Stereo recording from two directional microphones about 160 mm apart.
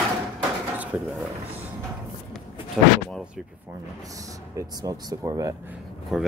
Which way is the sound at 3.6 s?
20° right (ahead or behind).